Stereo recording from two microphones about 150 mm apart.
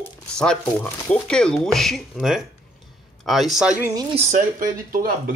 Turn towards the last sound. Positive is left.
turn(degrees=-65)  # may be behind; listen again after turning